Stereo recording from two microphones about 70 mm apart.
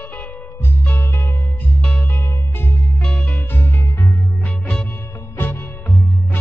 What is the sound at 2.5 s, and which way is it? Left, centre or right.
Music, left.